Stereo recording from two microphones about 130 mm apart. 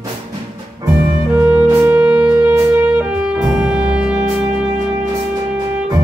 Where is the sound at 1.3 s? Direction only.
10° right (ahead or behind).